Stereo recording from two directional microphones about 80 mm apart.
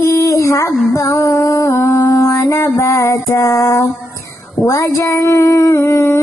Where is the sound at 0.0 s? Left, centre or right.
Left.